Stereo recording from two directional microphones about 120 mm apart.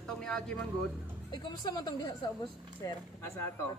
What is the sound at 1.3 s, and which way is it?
A man's voice, 35° left (ahead or behind).